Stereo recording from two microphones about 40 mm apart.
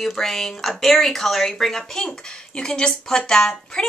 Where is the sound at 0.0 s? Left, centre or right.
Centre.